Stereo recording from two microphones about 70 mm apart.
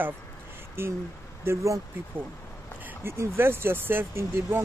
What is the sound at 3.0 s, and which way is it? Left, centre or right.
Speech, right.